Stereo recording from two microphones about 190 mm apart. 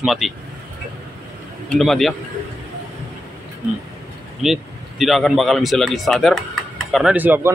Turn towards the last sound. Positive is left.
turn(degrees=-10)  # may be behind; listen again after turning